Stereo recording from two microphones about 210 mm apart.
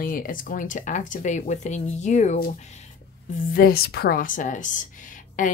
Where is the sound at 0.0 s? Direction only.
40° left (ahead or behind).